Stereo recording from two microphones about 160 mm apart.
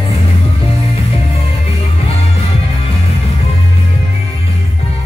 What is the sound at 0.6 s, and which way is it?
Music, 40° left (ahead or behind).